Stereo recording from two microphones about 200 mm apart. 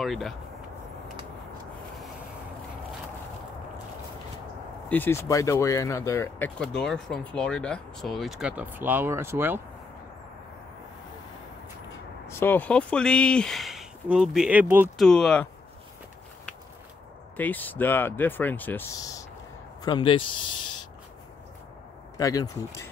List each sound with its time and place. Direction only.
0.0 s speech: centre (ahead or behind)
4.8 s speech: 10° left (ahead or behind)
6.6 s speech: centre (ahead or behind)
12.3 s speech: 10° left (ahead or behind); by 14.9 s 10° right (ahead or behind)
15.0 s speech: 5° left (ahead or behind)
17.4 s speech: 10° left (ahead or behind); by 20.3 s 25° left (ahead or behind)
22.1 s speech: 20° left (ahead or behind)